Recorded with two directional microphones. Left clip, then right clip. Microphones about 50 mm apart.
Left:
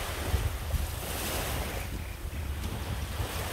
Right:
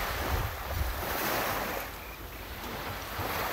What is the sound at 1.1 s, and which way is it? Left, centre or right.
Waves, right.